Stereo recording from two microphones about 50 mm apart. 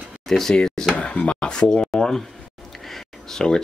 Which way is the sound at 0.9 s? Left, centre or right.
Left.